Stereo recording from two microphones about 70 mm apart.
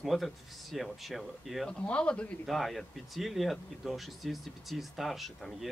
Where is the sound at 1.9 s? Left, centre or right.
Centre.